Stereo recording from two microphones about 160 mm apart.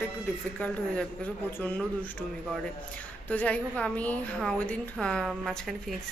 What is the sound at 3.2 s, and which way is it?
A woman's voice, 10° left (ahead or behind).